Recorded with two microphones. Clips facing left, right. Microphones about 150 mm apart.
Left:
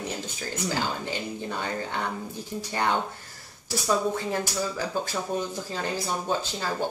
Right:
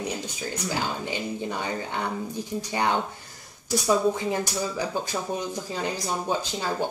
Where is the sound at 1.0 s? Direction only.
15° right (ahead or behind).